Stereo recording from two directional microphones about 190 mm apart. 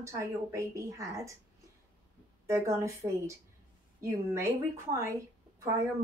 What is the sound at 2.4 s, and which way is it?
A woman's voice, 15° right (ahead or behind).